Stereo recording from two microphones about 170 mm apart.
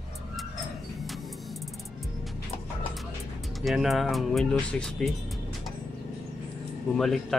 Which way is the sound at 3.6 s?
Centre (ahead or behind).